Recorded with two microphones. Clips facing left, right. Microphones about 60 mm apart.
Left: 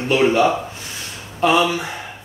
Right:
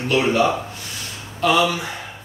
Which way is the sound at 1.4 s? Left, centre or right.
Left.